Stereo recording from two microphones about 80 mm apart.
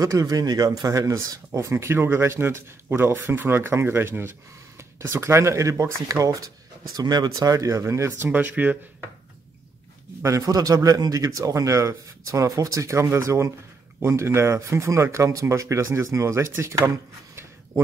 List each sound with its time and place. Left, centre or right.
0.0 s speech: right
7.0 s a man's voice: right
8.3 s speech: right
10.2 s a man's voice: right